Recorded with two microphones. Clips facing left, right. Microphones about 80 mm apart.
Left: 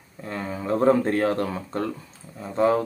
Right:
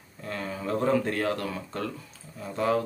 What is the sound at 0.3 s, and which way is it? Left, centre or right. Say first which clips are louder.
Speech: left 4 dB; left.